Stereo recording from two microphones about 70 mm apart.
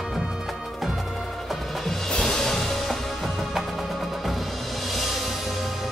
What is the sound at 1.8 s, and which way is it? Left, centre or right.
Music, centre.